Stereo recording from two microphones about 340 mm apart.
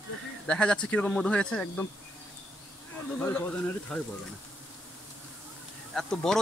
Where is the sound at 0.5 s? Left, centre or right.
Centre.